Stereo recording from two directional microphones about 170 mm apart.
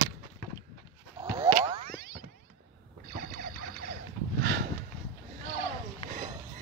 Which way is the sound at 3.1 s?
60° right (ahead or behind).